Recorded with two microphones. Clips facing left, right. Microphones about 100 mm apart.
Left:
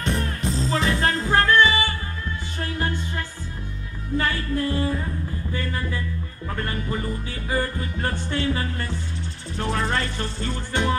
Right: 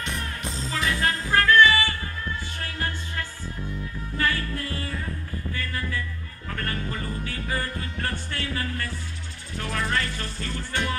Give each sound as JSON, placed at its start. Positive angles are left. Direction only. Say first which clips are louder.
{"t": 0.0, "sound": "music", "louder": "left 6 dB", "side_deg": 35}
{"t": 4.2, "sound": "music", "louder": "left 2 dB", "side_deg": 25}